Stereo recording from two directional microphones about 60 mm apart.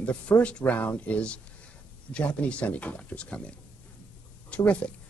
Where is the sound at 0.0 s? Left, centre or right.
Left.